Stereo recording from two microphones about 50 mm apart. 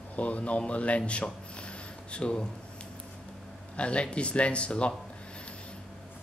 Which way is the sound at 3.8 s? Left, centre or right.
Left.